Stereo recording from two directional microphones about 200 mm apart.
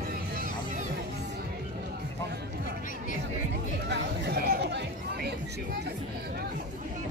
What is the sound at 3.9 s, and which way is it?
Chatter, 55° right (ahead or behind).